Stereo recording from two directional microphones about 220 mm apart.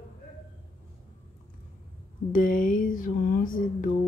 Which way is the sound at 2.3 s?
35° left (ahead or behind).